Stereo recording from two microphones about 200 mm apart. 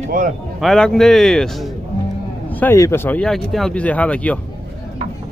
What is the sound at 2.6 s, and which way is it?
Speech, 10° left (ahead or behind).